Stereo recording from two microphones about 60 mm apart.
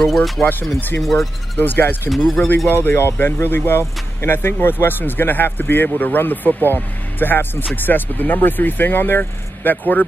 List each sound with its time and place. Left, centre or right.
0.0 s speech: centre
0.4 s speech: left
2.0 s speech: centre
2.7 s speech: left